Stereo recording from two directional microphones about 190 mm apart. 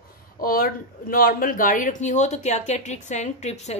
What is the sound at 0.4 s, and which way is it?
A woman's voice, 50° left (ahead or behind).